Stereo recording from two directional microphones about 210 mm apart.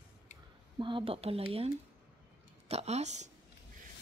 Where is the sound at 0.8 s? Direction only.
25° right (ahead or behind).